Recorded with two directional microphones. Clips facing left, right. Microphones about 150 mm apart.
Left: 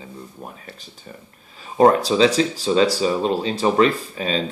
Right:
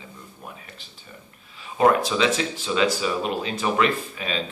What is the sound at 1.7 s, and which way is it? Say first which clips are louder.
Speech: left 4 dB; 35° left (ahead or behind).